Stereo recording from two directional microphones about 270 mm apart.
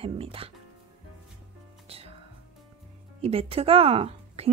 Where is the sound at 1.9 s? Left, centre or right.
Right.